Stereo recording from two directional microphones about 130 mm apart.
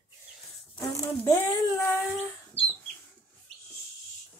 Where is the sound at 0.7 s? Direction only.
25° left (ahead or behind).